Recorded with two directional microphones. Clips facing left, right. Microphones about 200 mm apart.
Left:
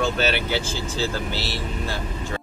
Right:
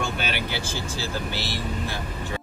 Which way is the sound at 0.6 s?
15° right (ahead or behind).